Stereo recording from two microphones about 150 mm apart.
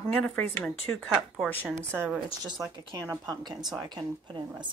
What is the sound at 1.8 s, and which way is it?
A woman's voice, 15° right (ahead or behind).